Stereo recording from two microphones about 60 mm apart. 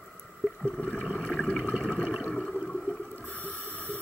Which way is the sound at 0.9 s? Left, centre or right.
Centre.